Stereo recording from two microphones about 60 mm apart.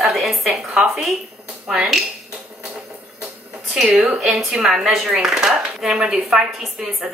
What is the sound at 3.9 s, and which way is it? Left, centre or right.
Speech, right.